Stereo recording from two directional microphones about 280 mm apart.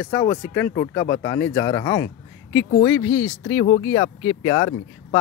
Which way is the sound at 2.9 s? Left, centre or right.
Left.